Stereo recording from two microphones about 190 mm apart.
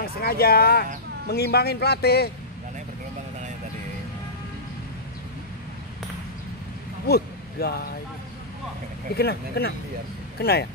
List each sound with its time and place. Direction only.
0.0 s speech: 55° left (ahead or behind)
7.1 s speech: 55° left (ahead or behind)
9.1 s speech: 55° left (ahead or behind)